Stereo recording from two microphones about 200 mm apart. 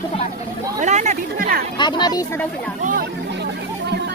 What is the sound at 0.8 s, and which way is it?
Speech, 35° right (ahead or behind).